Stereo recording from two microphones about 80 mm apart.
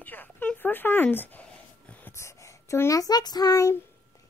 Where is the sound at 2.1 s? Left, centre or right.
Left.